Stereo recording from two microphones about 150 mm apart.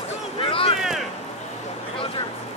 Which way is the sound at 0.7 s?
5° right (ahead or behind).